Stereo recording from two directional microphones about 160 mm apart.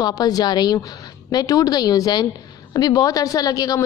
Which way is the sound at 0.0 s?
25° left (ahead or behind).